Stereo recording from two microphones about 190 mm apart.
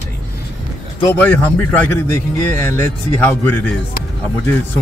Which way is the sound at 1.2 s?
10° left (ahead or behind).